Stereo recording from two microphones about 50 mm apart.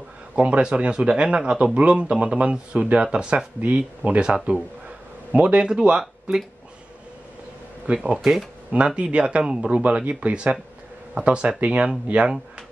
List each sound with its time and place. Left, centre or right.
0.4 s speech: right
7.8 s speech: right
8.2 s speech: centre
8.7 s speech: right